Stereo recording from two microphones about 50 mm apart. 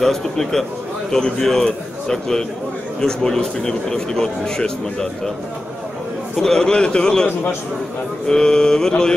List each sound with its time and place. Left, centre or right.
0.0 s a man's voice: centre
6.4 s a man's voice: centre
8.3 s a man's voice: centre